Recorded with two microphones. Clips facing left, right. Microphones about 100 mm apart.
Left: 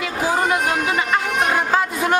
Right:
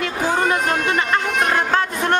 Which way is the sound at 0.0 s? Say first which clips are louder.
Even; 5° left (ahead or behind).